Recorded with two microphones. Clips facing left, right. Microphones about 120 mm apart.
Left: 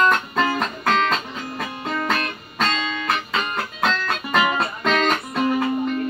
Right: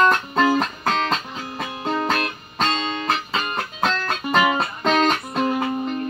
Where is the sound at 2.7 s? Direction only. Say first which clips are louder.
Right 1 dB; 35° right (ahead or behind).